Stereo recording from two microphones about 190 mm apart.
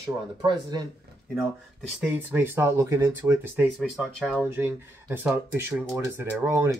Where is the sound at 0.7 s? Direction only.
20° right (ahead or behind).